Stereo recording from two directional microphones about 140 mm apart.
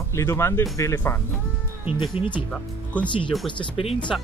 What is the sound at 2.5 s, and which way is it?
Speech, 10° left (ahead or behind).